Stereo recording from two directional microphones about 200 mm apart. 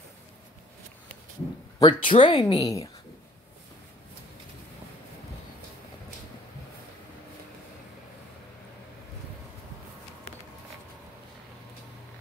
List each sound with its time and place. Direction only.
1.8 s speech: 25° left (ahead or behind)